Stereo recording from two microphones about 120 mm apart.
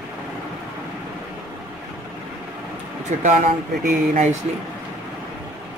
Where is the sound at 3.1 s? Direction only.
90° right.